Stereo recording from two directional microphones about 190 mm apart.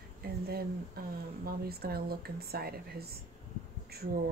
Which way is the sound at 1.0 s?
55° right (ahead or behind).